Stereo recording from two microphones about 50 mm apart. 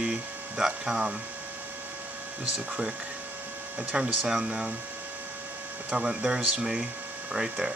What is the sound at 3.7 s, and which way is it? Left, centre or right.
Speech, centre.